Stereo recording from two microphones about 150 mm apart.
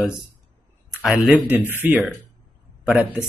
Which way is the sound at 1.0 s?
5° right (ahead or behind).